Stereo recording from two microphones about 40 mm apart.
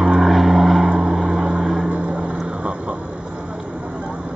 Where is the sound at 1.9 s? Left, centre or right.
Right.